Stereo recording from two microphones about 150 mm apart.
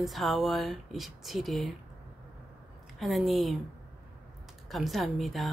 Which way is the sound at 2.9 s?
Centre (ahead or behind).